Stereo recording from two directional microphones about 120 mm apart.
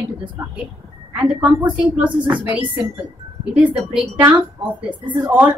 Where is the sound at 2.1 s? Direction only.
40° right (ahead or behind).